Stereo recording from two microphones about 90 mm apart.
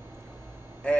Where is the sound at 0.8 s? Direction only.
10° left (ahead or behind).